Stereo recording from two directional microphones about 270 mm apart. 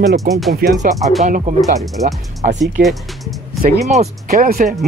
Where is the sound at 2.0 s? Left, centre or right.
Right.